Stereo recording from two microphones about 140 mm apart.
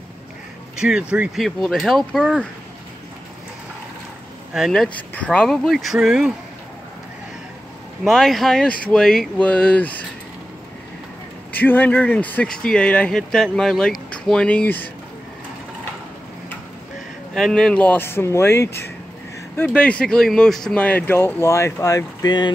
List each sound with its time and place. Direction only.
0.7 s speech: 5° right (ahead or behind)
1.4 s speech: centre (ahead or behind)
4.6 s speech: centre (ahead or behind)
8.0 s speech: centre (ahead or behind)
11.5 s speech: 15° left (ahead or behind)
17.3 s speech: 5° left (ahead or behind); by 22.5 s 30° left (ahead or behind)